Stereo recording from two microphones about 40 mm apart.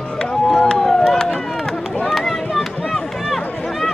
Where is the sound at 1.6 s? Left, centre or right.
Centre.